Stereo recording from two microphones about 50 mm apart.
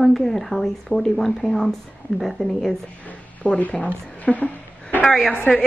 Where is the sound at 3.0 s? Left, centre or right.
Left.